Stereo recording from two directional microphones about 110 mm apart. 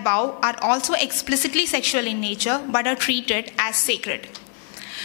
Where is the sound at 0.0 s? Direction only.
20° left (ahead or behind).